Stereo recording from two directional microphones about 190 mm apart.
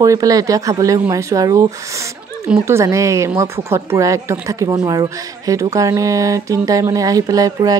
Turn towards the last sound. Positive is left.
turn(degrees=-20)  # may be behind; listen again after turning